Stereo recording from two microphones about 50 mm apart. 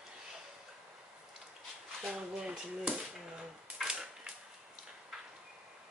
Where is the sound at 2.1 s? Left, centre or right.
Centre.